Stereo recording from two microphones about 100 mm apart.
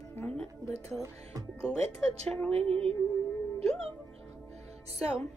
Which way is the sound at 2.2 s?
10° left (ahead or behind).